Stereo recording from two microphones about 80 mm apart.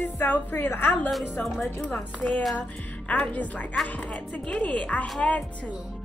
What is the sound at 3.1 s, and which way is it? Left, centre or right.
Speech, centre.